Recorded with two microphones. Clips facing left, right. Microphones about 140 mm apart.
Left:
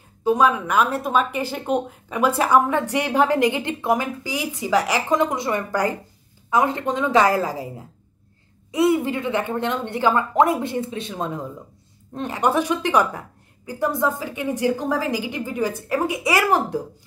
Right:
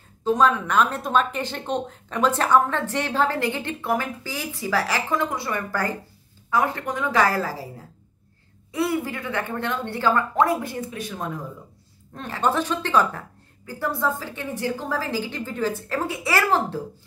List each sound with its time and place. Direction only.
0.2 s speech: 10° left (ahead or behind)
8.7 s speech: 20° left (ahead or behind)